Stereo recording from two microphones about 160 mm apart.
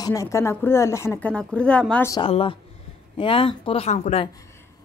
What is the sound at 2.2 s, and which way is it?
Speech, 35° left (ahead or behind).